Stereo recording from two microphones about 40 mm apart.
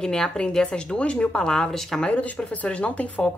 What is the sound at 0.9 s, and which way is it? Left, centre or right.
A woman's voice, left.